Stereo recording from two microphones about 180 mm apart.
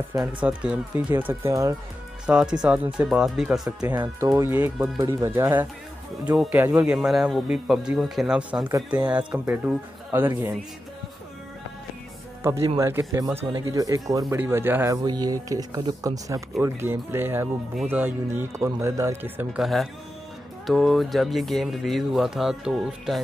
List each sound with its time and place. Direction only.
0.4 s speech: 5° right (ahead or behind)
2.2 s speech: 5° right (ahead or behind)
3.9 s speech: 20° right (ahead or behind)
12.6 s speech: 15° right (ahead or behind)